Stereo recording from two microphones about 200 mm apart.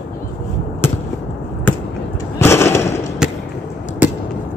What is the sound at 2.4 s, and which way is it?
Fireworks, 10° left (ahead or behind).